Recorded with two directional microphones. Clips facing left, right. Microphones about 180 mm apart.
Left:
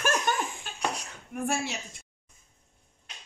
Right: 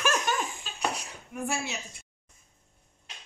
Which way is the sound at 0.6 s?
55° left (ahead or behind).